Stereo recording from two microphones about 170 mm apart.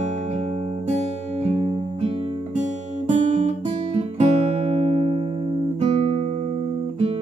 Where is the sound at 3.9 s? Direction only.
40° right (ahead or behind).